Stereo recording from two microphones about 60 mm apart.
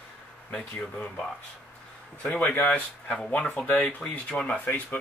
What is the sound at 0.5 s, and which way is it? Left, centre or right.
Speech, centre.